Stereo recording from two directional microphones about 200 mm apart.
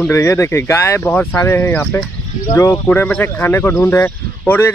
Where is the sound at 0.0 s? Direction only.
10° left (ahead or behind).